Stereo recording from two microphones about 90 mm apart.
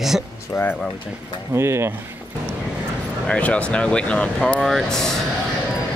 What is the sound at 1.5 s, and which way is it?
Speech, 30° right (ahead or behind).